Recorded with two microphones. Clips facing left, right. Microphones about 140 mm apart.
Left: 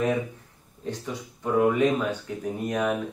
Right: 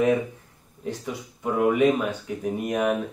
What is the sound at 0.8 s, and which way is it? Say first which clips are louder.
Speech: right 1 dB; 10° right (ahead or behind).